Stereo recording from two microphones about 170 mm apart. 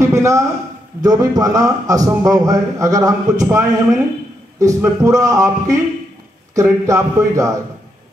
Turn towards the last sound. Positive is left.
turn(degrees=-20)  # may be behind; listen again after turning